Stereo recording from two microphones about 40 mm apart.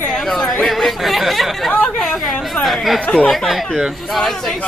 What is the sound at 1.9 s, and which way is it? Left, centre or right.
Chatter, centre.